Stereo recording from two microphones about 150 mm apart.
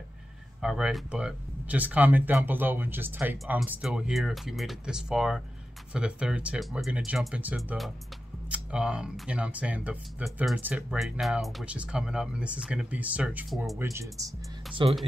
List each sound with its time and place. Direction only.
0.6 s speech: 5° right (ahead or behind)
13.9 s speech: 20° right (ahead or behind)
14.8 s speech: 35° right (ahead or behind)